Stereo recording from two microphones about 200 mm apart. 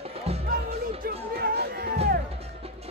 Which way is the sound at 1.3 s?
50° right (ahead or behind).